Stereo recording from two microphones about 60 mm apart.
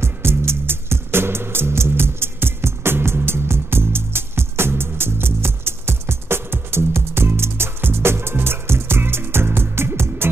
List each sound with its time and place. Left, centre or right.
0.0 s music: right